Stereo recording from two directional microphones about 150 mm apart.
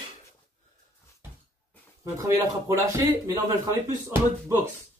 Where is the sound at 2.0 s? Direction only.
20° right (ahead or behind).